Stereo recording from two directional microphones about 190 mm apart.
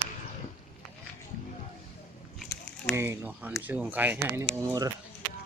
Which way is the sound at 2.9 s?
10° right (ahead or behind).